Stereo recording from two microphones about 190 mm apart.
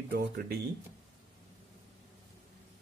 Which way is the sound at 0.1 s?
55° right (ahead or behind).